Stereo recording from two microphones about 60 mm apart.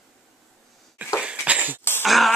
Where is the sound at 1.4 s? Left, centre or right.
Right.